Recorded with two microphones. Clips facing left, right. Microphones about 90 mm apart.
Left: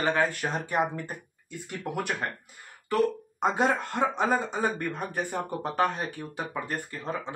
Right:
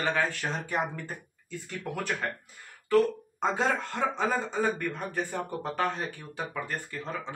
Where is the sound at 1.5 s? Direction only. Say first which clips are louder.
Left 2 dB; 15° left (ahead or behind).